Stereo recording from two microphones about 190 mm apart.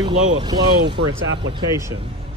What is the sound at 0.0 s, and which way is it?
Speech, 20° right (ahead or behind).